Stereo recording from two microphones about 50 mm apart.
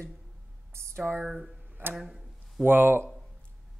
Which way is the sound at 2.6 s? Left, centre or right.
Right.